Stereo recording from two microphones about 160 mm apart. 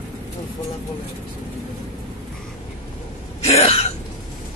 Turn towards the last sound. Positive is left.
turn(degrees=40)  # may be behind; listen again after turning